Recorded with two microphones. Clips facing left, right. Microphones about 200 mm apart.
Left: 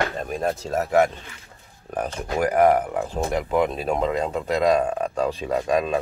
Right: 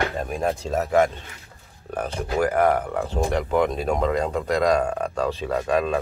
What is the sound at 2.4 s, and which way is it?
Speech, 15° left (ahead or behind).